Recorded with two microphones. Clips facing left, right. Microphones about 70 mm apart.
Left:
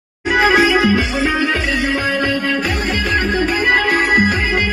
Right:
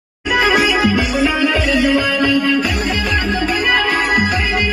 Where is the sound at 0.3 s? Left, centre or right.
Left.